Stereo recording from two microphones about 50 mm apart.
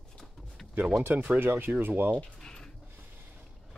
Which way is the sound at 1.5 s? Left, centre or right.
Right.